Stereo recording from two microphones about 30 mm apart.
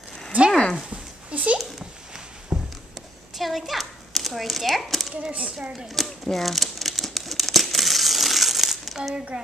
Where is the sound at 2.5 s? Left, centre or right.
Right.